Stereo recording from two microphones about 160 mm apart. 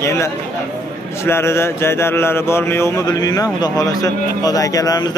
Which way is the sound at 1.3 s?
15° left (ahead or behind).